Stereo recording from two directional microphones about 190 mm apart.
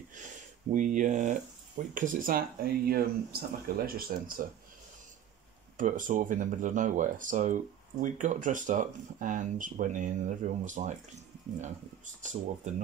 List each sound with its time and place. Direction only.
0.1 s speech: 40° right (ahead or behind)
5.8 s speech: 45° right (ahead or behind)
12.2 s speech: 40° right (ahead or behind)